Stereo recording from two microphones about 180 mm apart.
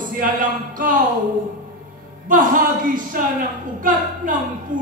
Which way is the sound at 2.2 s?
50° right (ahead or behind).